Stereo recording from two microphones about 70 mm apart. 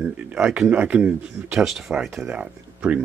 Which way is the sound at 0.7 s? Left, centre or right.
Centre.